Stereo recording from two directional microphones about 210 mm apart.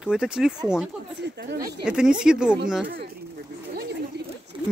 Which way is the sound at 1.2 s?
55° right (ahead or behind).